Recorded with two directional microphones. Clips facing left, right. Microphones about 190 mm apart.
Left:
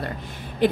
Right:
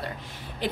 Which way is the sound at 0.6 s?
55° left (ahead or behind).